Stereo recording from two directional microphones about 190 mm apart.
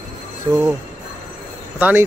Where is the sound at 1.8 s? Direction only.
10° right (ahead or behind).